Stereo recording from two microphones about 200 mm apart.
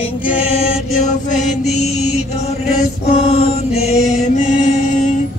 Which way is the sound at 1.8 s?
30° left (ahead or behind).